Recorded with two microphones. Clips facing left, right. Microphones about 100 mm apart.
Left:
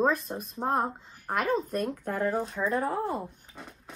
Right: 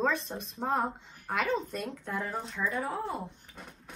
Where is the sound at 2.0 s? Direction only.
50° left (ahead or behind).